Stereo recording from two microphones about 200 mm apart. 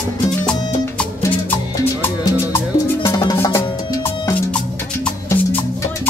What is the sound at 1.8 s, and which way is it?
Music, 15° left (ahead or behind).